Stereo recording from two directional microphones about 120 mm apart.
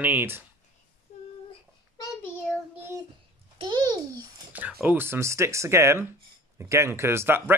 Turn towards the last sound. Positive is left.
turn(degrees=-20)  # may be behind; listen again after turning